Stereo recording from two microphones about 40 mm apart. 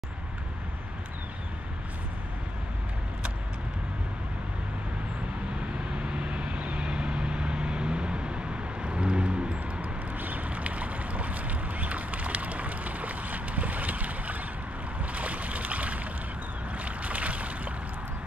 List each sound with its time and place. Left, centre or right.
5.6 s vehicle: right
10.1 s boat: right